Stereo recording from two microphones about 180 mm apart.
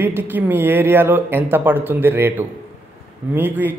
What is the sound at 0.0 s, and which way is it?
A man's voice, 10° right (ahead or behind).